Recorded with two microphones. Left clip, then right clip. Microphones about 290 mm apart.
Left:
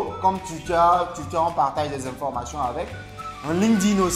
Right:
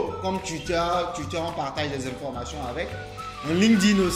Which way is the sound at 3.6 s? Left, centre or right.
Left.